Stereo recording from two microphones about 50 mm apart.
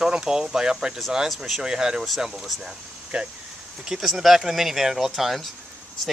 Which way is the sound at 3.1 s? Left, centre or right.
Centre.